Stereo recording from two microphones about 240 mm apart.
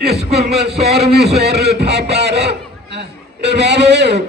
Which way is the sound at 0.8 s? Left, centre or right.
Right.